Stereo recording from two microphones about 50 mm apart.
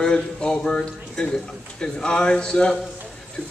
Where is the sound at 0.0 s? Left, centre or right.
Centre.